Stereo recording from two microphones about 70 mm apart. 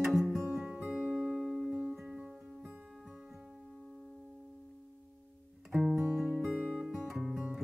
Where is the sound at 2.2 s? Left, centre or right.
Centre.